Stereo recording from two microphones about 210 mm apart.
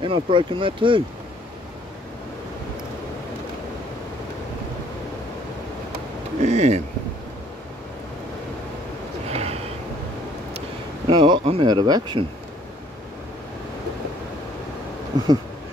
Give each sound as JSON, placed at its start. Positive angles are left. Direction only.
{"t": 0.0, "sound": "speech", "side_deg": -25}
{"t": 6.4, "sound": "speech", "side_deg": -30}
{"t": 9.3, "sound": "a sound", "side_deg": -30}
{"t": 11.1, "sound": "speech", "side_deg": -20}
{"t": 15.1, "sound": "speech", "side_deg": -20}